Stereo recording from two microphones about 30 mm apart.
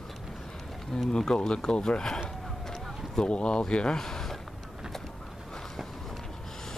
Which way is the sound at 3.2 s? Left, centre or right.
Left.